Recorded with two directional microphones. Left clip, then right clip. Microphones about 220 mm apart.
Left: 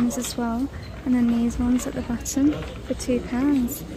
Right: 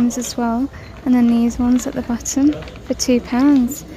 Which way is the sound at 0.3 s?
15° right (ahead or behind).